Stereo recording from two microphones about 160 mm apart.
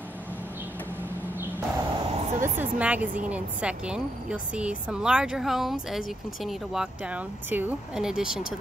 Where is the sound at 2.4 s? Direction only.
10° right (ahead or behind).